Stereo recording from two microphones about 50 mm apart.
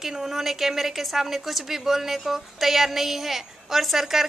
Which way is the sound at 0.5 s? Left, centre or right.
Centre.